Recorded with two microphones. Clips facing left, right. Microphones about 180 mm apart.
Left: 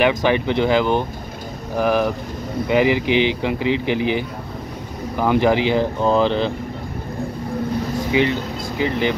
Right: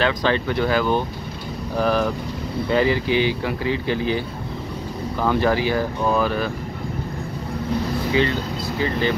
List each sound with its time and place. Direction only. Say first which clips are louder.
0.0 s speech: left 3 dB; 15° left (ahead or behind)
8.1 s speech: left 2 dB; 15° left (ahead or behind)